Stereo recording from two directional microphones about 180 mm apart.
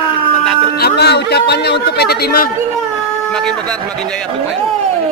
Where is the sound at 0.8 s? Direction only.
65° left (ahead or behind).